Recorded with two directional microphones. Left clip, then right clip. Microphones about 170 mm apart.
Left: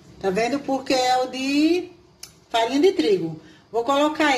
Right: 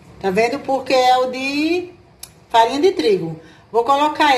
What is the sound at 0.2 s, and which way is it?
A woman's voice, 35° left (ahead or behind).